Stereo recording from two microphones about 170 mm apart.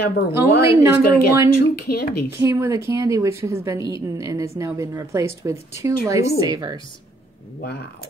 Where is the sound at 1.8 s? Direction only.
65° left (ahead or behind).